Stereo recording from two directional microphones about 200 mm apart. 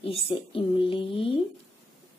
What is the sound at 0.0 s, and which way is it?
A woman's voice, 30° left (ahead or behind).